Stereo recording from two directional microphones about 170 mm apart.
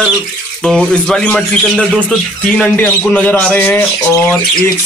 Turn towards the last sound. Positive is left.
turn(degrees=15)  # may be behind; listen again after turning